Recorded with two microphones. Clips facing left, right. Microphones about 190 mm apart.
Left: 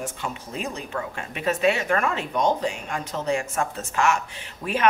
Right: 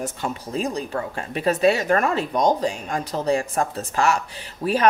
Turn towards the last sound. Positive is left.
turn(degrees=-35)  # may be behind; listen again after turning